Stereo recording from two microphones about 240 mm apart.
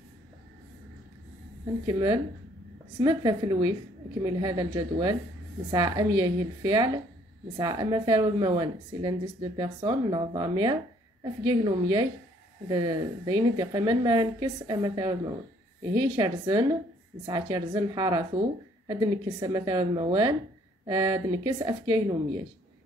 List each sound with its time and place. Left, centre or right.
1.9 s a woman's voice: centre